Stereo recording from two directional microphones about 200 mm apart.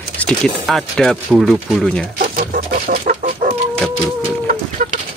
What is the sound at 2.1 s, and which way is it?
Chicken, 45° right (ahead or behind).